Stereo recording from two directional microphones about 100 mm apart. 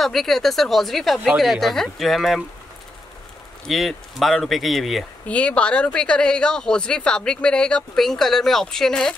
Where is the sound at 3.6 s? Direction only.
Centre (ahead or behind).